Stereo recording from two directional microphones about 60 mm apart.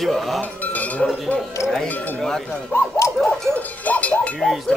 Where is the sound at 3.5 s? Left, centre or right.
Left.